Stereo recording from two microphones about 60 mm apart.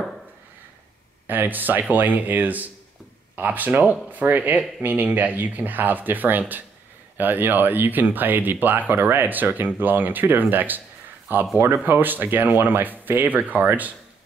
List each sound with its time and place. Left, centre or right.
1.2 s speech: right